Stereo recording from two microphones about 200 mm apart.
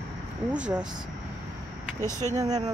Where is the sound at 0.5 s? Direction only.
5° right (ahead or behind).